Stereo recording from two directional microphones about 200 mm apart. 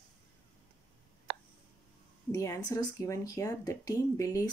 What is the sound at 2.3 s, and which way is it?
Speech, 15° left (ahead or behind).